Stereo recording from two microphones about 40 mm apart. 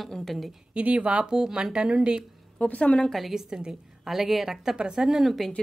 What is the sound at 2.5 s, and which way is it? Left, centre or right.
Speech, left.